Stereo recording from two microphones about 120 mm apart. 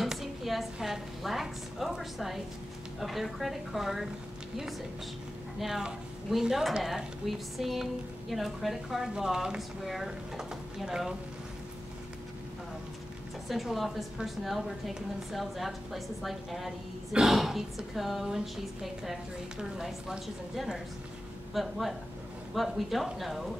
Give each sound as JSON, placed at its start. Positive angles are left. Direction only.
{"t": 0.0, "sound": "a woman's voice", "side_deg": 0}
{"t": 5.6, "sound": "speech", "side_deg": -5}
{"t": 13.5, "sound": "speech", "side_deg": 0}